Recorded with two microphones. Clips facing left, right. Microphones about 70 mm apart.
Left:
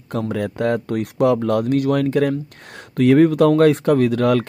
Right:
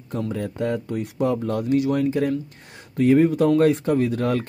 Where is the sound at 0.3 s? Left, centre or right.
Left.